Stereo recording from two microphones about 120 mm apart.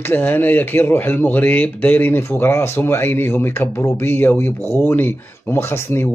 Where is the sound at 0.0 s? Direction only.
15° left (ahead or behind).